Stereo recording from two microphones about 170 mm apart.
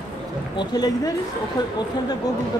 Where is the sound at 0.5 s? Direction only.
25° left (ahead or behind).